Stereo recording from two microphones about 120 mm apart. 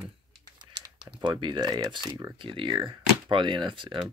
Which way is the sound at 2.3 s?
45° right (ahead or behind).